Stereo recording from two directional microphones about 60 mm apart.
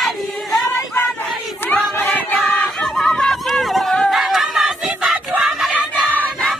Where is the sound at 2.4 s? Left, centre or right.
Centre.